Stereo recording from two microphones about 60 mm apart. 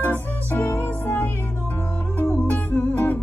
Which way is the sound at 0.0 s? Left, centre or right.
Left.